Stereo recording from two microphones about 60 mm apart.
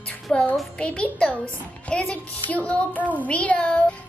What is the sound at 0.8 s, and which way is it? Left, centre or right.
A child's voice, left.